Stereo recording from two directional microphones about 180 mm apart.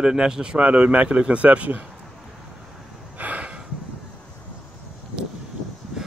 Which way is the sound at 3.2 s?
10° right (ahead or behind).